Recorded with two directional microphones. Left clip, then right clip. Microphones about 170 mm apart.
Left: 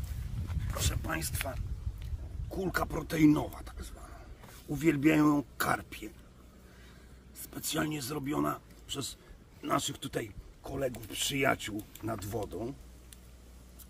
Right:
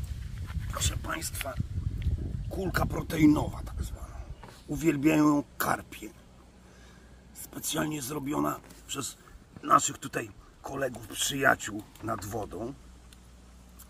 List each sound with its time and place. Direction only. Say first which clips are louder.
0.7 s a sound: right 3 dB; 15° left (ahead or behind)
1.0 s speech: right 1 dB; 20° left (ahead or behind)
7.4 s speech: right 2 dB; 20° left (ahead or behind)